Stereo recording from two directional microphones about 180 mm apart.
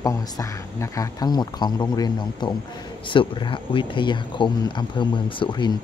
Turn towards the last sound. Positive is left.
turn(degrees=25)  # may be behind; listen again after turning